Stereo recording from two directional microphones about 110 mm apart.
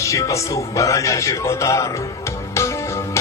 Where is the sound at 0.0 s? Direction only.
25° left (ahead or behind).